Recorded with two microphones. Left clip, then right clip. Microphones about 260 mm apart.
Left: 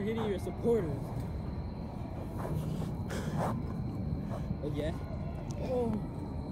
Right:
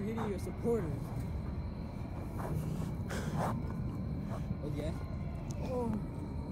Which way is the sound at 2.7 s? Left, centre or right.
Centre.